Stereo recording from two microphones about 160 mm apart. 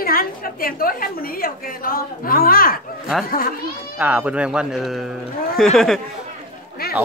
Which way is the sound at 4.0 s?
10° right (ahead or behind).